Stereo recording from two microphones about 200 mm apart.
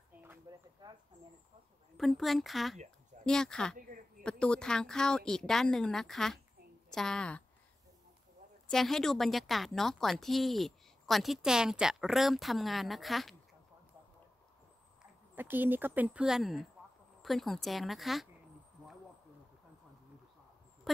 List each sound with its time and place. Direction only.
0.5 s a sound: 20° right (ahead or behind)
2.0 s a woman's voice: centre (ahead or behind)
8.6 s a woman's voice: centre (ahead or behind)
15.3 s a woman's voice: 10° right (ahead or behind)